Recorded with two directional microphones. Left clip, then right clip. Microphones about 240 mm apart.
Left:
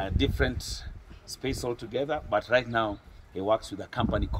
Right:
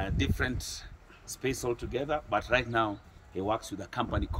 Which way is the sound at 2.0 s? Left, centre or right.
Centre.